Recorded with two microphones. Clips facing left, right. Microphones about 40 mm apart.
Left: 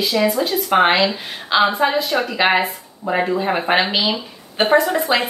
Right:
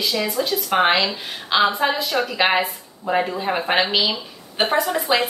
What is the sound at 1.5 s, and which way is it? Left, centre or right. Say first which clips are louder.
Speech: left 2 dB; centre.